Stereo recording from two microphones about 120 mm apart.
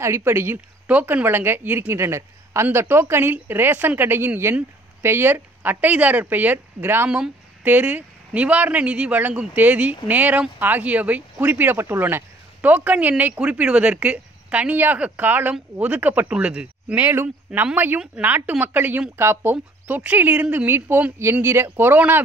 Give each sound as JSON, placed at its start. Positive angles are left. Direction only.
{"t": 0.0, "sound": "speech", "side_deg": -20}